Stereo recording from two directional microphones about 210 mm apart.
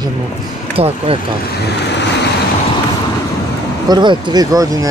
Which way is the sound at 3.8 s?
20° right (ahead or behind).